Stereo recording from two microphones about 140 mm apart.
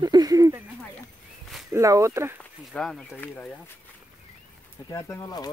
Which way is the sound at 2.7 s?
5° left (ahead or behind).